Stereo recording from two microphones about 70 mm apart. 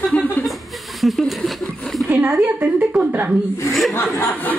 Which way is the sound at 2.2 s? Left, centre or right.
Right.